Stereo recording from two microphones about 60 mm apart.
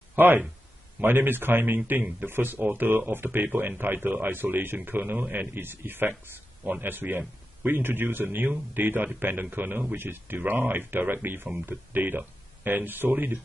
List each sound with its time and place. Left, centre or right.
0.1 s speech: right